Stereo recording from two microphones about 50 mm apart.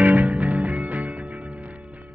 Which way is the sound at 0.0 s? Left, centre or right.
Right.